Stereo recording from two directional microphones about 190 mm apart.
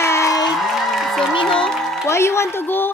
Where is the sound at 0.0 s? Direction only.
15° left (ahead or behind).